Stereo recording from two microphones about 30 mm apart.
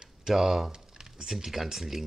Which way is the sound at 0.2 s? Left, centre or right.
Centre.